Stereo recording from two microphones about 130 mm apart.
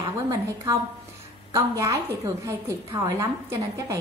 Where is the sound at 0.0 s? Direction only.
25° right (ahead or behind).